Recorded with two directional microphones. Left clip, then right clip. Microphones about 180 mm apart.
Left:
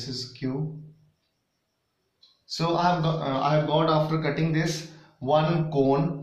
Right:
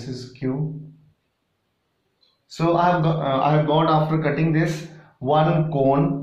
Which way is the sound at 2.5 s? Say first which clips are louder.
Right 5 dB; 15° right (ahead or behind).